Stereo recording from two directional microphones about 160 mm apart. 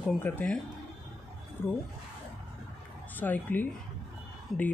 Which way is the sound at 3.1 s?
10° left (ahead or behind).